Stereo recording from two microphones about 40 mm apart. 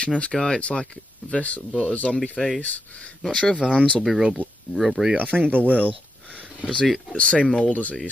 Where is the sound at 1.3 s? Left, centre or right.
Left.